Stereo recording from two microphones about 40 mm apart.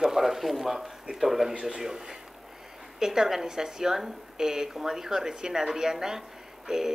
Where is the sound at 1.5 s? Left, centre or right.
Centre.